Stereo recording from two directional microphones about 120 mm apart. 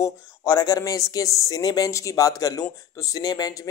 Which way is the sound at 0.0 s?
30° left (ahead or behind).